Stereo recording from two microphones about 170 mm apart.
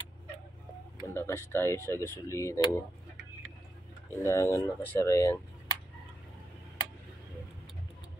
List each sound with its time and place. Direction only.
1.0 s speech: 15° left (ahead or behind)
4.2 s speech: 15° left (ahead or behind)